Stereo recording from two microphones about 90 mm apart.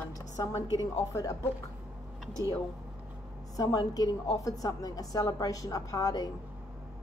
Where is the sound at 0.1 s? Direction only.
40° left (ahead or behind).